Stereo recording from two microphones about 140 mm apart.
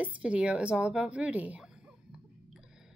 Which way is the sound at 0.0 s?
10° right (ahead or behind).